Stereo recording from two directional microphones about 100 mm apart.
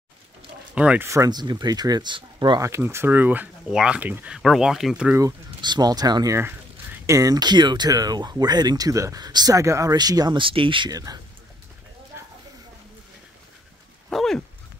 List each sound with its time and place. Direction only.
0.7 s speech: 15° right (ahead or behind)
1.0 s speech: 30° right (ahead or behind)
1.3 s speech: 45° right (ahead or behind)
2.6 s speech: 25° right (ahead or behind)
4.4 s speech: 5° right (ahead or behind)
5.6 s speech: 45° right (ahead or behind)
6.3 s a sound: 20° right (ahead or behind)
7.1 s speech: 35° right (ahead or behind)
10.4 s speech: 60° right (ahead or behind)
10.9 s speech: 40° right (ahead or behind)
14.1 s dog: 5° left (ahead or behind)